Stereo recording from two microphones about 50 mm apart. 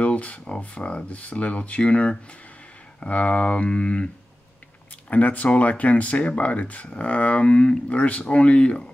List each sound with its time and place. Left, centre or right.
0.0 s speech: left
5.1 s speech: left